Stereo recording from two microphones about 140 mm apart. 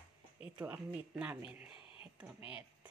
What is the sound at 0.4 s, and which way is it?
Speech, 10° right (ahead or behind).